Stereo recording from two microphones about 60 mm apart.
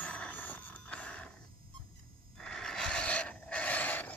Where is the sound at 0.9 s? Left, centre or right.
Left.